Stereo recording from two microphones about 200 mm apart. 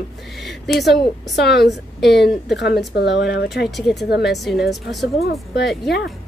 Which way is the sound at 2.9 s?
60° left (ahead or behind).